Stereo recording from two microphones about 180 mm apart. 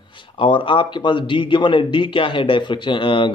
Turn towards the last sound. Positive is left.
turn(degrees=30)  # may be behind; listen again after turning